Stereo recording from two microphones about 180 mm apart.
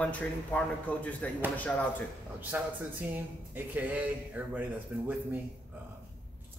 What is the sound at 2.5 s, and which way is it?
A man's voice, 10° right (ahead or behind).